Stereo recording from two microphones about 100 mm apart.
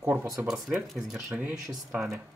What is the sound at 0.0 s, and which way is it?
Speech, 25° right (ahead or behind).